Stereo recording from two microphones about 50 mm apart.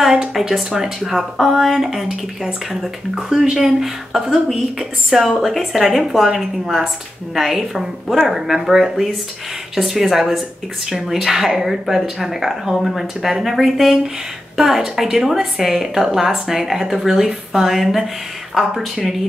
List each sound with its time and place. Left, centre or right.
0.0 s a woman's voice: centre